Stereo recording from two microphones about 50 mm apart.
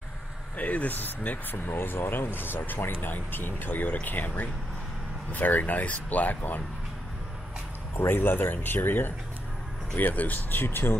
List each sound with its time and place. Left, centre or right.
0.6 s speech: left
8.0 s speech: left